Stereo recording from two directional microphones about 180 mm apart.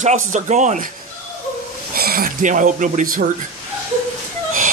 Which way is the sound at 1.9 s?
55° right (ahead or behind).